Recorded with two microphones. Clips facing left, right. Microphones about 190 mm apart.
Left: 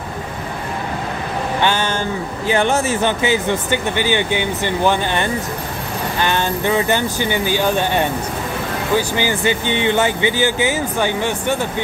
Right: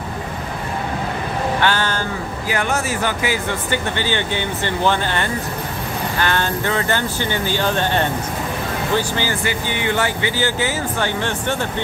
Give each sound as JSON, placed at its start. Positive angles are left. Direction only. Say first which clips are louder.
{"t": 1.6, "sound": "speech", "louder": "left 4 dB", "side_deg": 20}